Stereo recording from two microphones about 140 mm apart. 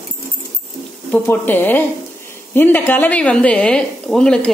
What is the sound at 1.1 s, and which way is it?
A woman's voice, 15° left (ahead or behind).